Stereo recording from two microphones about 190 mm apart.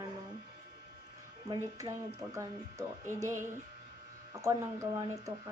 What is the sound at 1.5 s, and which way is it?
Speech, 15° right (ahead or behind).